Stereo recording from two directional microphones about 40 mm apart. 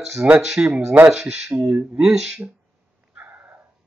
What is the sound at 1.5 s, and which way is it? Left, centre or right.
Speech, right.